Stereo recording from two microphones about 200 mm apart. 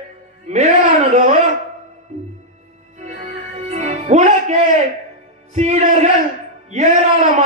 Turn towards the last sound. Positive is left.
turn(degrees=-35)  # may be behind; listen again after turning